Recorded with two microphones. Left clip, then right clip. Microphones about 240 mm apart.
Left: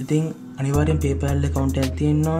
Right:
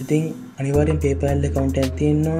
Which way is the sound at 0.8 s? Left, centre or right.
Centre.